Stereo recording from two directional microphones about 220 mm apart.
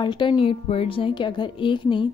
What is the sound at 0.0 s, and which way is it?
Speech, 20° left (ahead or behind).